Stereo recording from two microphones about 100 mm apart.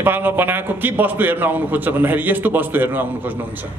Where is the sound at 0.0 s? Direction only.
20° right (ahead or behind).